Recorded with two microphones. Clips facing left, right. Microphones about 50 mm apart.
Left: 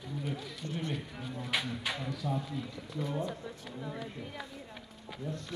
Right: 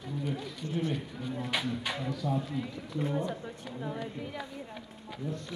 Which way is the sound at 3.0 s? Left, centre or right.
Right.